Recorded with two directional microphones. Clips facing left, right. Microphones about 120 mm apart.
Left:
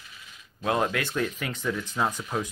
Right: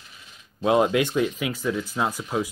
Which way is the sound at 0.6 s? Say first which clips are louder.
Right 6 dB; 20° right (ahead or behind).